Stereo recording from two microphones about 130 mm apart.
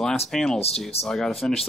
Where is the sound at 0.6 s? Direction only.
50° left (ahead or behind).